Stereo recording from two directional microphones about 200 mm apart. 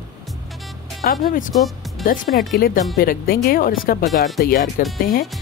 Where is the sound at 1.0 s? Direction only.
45° left (ahead or behind).